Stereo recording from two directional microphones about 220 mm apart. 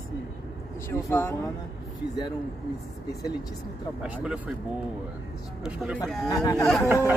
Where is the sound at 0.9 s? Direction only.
10° left (ahead or behind).